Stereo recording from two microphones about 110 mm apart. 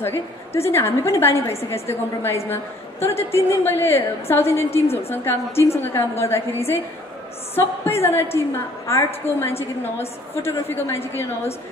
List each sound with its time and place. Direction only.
0.0 s a woman's voice: 20° left (ahead or behind)